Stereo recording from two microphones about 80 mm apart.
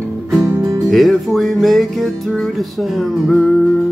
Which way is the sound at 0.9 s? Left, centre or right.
Centre.